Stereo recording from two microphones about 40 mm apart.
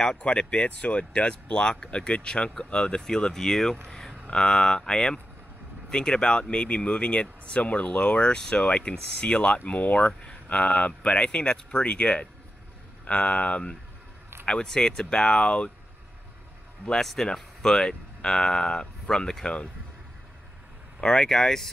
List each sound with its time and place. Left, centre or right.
0.0 s speech: left
16.9 s speech: centre
21.0 s speech: centre